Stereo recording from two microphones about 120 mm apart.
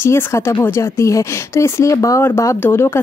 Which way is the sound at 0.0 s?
25° left (ahead or behind).